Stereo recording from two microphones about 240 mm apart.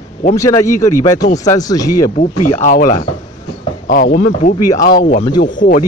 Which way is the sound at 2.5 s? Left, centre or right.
Left.